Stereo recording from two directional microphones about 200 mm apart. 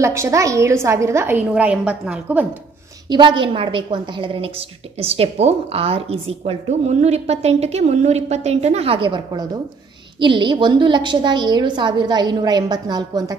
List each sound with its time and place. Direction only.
0.0 s a woman's voice: 15° right (ahead or behind)
3.1 s a woman's voice: 25° right (ahead or behind)